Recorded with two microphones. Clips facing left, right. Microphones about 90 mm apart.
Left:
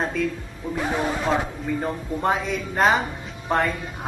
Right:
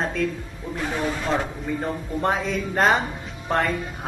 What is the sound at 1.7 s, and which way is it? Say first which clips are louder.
Speech: even; centre (ahead or behind).